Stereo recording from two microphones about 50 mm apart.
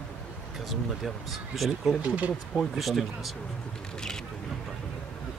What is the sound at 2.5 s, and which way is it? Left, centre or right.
Speech, centre.